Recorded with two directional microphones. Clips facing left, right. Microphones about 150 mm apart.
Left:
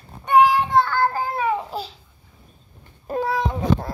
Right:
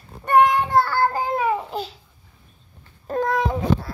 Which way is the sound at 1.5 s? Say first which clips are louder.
Even; centre (ahead or behind).